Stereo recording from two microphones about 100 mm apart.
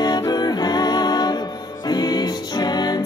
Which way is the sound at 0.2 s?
40° left (ahead or behind).